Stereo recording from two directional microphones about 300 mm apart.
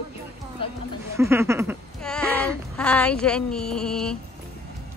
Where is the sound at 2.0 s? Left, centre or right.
Centre.